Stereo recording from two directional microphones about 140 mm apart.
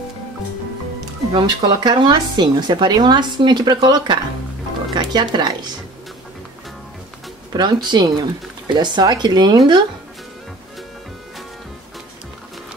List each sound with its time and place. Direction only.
1.3 s speech: 30° right (ahead or behind)
7.5 s speech: 30° right (ahead or behind)